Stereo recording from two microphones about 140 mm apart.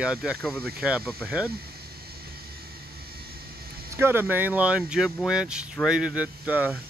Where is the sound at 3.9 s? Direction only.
15° right (ahead or behind).